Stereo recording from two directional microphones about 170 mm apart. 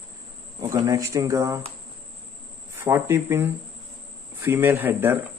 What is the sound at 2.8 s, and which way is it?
Speech, 15° right (ahead or behind).